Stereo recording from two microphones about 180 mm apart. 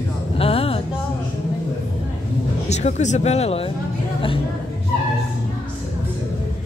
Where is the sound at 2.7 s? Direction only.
40° left (ahead or behind).